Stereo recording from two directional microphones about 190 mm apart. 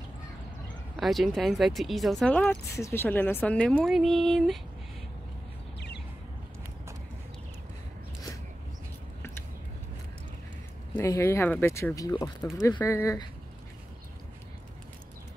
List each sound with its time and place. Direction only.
0.9 s speech: centre (ahead or behind)
11.0 s speech: 15° left (ahead or behind)